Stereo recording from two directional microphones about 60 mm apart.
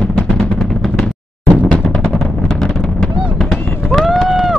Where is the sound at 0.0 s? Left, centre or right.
Centre.